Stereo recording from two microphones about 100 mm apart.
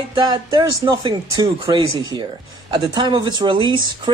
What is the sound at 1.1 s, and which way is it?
Speech, 55° right (ahead or behind).